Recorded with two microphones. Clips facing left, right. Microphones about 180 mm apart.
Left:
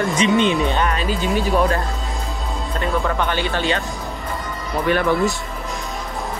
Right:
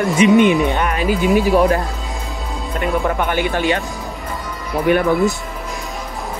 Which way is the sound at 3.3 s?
15° right (ahead or behind).